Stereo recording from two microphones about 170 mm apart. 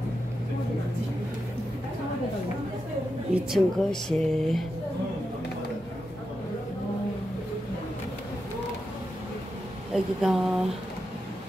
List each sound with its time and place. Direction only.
3.3 s speech: centre (ahead or behind)
9.9 s speech: centre (ahead or behind)